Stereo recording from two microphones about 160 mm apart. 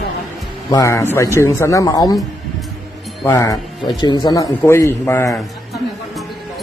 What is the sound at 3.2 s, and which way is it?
A man's voice, 20° left (ahead or behind).